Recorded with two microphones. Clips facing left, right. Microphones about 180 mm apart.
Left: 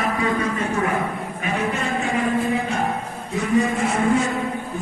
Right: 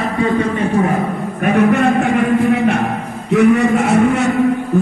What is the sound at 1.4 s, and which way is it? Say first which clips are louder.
A man's voice: right 12 dB; 60° right (ahead or behind).